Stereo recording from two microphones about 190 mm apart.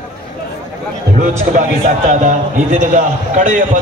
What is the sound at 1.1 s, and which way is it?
A man's voice, 45° right (ahead or behind).